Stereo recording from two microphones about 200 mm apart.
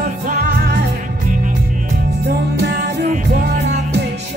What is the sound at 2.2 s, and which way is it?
Music, 60° right (ahead or behind).